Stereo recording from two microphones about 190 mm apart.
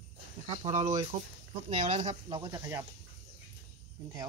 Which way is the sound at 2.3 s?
20° right (ahead or behind).